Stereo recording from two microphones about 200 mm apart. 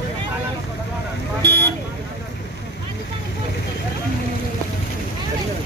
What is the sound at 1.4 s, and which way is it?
Vehicle, 55° right (ahead or behind).